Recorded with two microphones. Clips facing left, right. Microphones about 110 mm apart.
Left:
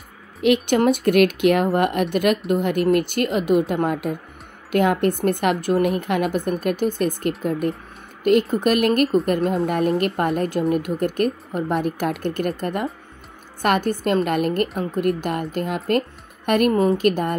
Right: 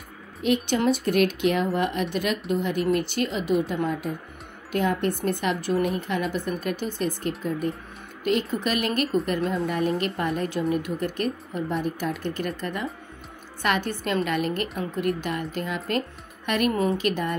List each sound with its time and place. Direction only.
0.4 s a woman's voice: 65° left (ahead or behind); by 17.4 s 50° left (ahead or behind)